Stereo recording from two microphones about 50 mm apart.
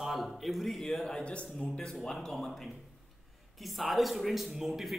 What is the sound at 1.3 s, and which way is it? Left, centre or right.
A man's voice, centre.